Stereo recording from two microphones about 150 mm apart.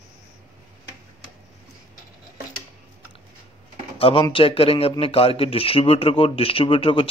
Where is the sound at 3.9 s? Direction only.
40° left (ahead or behind).